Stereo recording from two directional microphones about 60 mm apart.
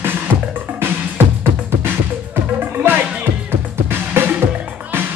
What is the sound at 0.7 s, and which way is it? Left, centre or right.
Music, right.